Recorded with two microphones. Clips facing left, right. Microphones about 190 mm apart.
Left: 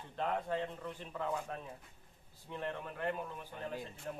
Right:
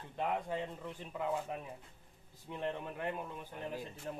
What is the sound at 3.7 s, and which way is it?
Speech, centre (ahead or behind).